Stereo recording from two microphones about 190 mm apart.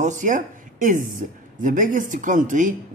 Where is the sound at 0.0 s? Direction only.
40° right (ahead or behind).